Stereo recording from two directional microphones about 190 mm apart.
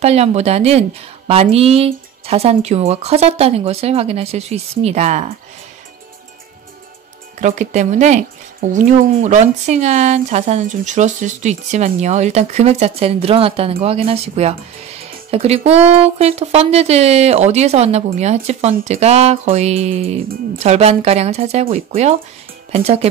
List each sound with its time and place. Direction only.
0.0 s speech: 35° right (ahead or behind)
7.3 s speech: 40° right (ahead or behind)